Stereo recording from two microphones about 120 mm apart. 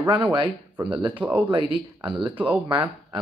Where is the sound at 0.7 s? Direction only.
10° right (ahead or behind).